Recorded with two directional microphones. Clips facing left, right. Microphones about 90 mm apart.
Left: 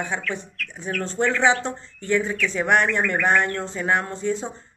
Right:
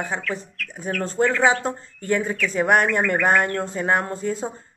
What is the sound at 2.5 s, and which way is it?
Speech, 40° right (ahead or behind).